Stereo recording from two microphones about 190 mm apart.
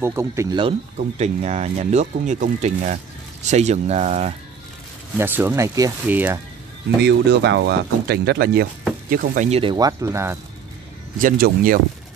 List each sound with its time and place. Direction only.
0.0 s speech: 15° right (ahead or behind)
0.9 s speech: 35° right (ahead or behind)
5.2 s speech: 10° right (ahead or behind)
7.0 s speech: 65° right (ahead or behind)
9.1 s speech: 45° right (ahead or behind); by 10.3 s 15° right (ahead or behind)
11.1 s speech: 50° right (ahead or behind)